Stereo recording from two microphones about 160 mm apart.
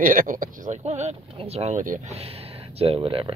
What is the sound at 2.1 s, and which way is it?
Speech, 40° right (ahead or behind).